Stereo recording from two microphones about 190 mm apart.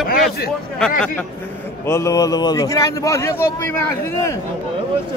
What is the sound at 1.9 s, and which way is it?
A man's voice, 15° left (ahead or behind).